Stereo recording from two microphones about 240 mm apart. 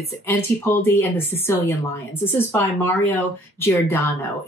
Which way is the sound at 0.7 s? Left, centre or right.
Centre.